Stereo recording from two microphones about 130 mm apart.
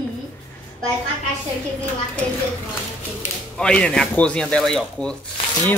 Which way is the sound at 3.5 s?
10° left (ahead or behind).